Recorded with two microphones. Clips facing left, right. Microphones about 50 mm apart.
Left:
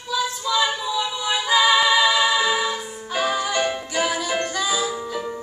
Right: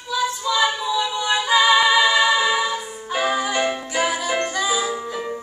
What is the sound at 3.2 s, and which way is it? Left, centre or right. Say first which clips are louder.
Music: right 1 dB; centre.